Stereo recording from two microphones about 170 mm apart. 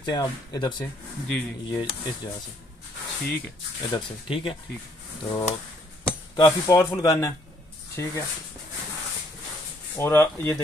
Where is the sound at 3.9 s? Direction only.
30° left (ahead or behind).